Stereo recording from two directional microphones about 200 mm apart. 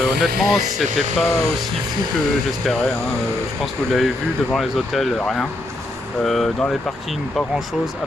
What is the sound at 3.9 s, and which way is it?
Speech, centre (ahead or behind).